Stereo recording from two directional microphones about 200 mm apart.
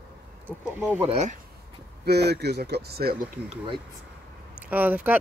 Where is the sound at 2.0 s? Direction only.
55° right (ahead or behind).